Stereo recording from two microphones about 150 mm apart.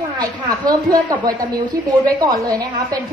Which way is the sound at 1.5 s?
25° right (ahead or behind).